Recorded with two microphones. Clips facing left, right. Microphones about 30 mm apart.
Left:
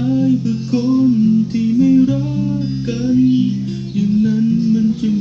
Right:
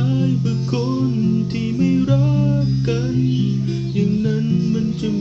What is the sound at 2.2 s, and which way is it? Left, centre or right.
Music, right.